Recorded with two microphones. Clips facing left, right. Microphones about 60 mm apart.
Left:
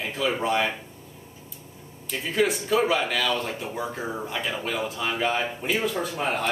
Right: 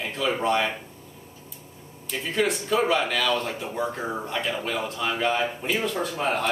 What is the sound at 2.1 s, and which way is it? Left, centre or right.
Speech, centre.